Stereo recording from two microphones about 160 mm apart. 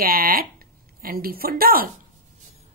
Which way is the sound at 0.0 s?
65° right (ahead or behind).